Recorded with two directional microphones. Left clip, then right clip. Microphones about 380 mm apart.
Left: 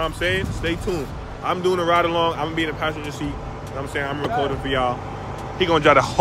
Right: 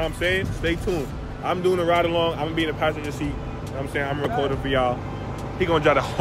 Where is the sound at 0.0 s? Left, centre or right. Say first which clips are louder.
Left 1 dB; centre.